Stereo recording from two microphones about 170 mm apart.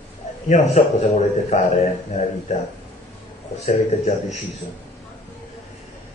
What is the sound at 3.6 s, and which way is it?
Speech, 40° left (ahead or behind).